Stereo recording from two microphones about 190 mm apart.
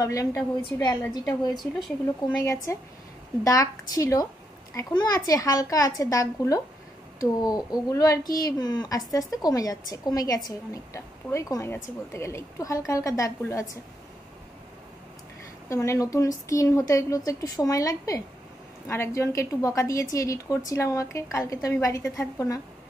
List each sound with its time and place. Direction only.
0.0 s a woman's voice: 15° left (ahead or behind)
1.5 s speech: centre (ahead or behind)
2.4 s a woman's voice: 15° left (ahead or behind)
15.7 s a woman's voice: 15° left (ahead or behind)